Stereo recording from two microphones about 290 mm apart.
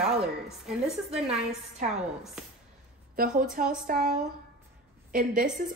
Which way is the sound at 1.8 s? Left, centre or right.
Right.